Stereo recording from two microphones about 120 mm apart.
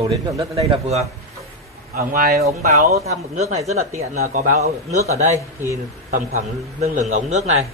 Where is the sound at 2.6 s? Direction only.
75° right (ahead or behind).